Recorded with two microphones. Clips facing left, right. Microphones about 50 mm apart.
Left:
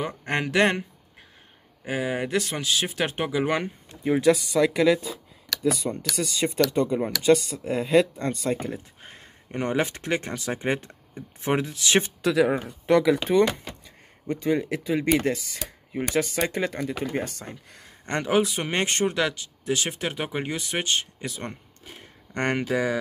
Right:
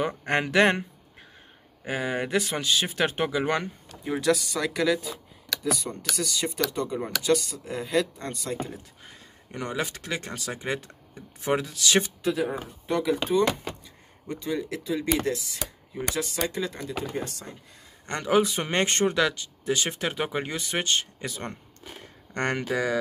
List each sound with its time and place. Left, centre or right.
0.0 s speech: centre
1.9 s speech: centre
3.6 s speech: left
6.1 s speech: left
12.2 s speech: left
14.2 s speech: left
18.4 s speech: centre
22.3 s speech: centre